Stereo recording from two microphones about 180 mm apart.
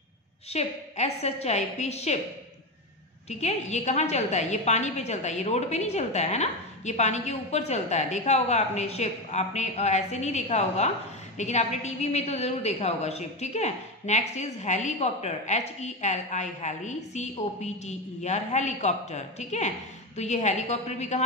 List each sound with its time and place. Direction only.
0.5 s a woman's voice: 35° left (ahead or behind)
3.3 s a woman's voice: 35° left (ahead or behind)